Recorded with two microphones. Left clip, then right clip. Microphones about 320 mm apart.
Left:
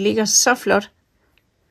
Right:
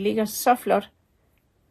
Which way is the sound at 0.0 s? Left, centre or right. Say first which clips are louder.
Left 6 dB; left.